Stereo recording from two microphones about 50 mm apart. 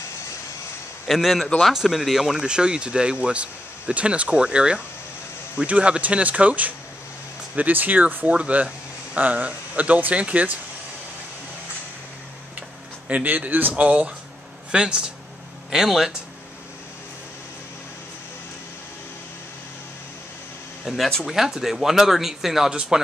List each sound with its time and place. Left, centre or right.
1.0 s a man's voice: centre; by 10.6 s right
13.1 s speech: right
13.7 s speech: right; by 16.2 s centre
20.8 s speech: centre